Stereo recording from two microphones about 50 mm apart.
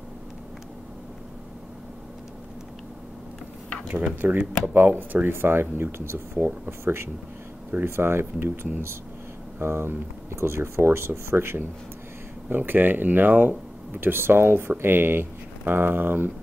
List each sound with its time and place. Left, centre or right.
4.2 s speech: right
9.6 s speech: right
12.4 s speech: right